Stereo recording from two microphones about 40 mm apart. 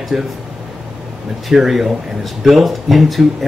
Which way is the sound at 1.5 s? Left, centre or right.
Centre.